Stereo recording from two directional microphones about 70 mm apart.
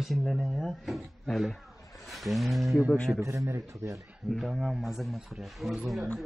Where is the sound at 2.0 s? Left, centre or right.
Centre.